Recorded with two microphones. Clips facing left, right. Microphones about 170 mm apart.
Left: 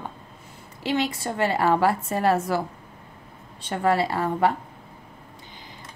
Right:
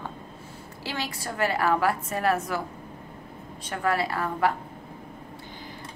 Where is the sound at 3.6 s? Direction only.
25° left (ahead or behind).